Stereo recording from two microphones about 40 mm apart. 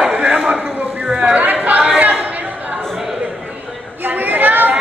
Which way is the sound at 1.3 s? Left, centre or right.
Right.